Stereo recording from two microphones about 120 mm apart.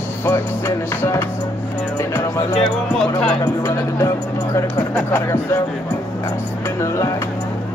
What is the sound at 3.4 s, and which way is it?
Speech, 20° left (ahead or behind).